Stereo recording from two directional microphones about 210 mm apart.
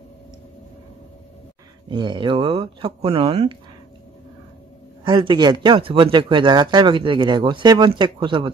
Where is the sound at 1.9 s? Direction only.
20° right (ahead or behind).